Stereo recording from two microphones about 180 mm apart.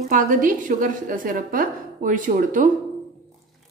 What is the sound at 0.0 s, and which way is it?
A woman's voice, 50° right (ahead or behind).